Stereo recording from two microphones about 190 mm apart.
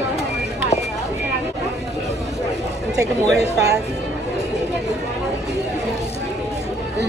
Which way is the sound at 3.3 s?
60° right (ahead or behind).